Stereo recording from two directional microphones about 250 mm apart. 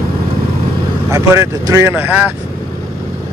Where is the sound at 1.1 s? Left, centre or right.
Centre.